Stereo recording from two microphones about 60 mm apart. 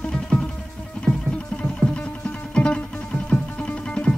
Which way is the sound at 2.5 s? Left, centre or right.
Centre.